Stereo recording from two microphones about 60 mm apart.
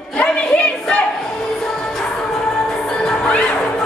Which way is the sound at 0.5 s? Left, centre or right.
Centre.